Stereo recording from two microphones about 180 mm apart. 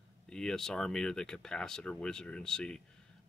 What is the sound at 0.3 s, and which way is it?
Speech, 5° left (ahead or behind).